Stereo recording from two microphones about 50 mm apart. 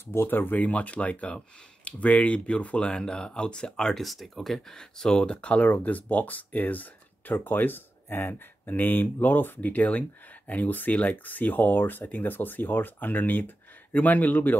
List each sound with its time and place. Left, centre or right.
0.0 s speech: left; by 4.0 s centre
4.0 s speech: centre; by 14.6 s left